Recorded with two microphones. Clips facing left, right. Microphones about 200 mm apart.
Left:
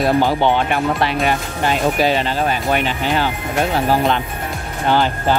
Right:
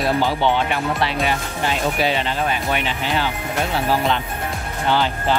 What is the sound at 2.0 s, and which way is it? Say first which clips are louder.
Speech: left 4 dB; 45° left (ahead or behind).